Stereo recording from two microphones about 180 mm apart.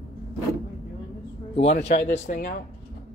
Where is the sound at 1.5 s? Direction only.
35° left (ahead or behind).